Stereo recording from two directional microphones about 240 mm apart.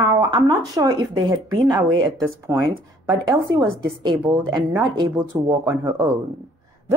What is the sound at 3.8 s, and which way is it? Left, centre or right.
Speech, centre.